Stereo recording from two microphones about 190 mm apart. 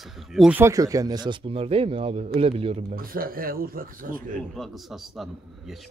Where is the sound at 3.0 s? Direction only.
50° right (ahead or behind).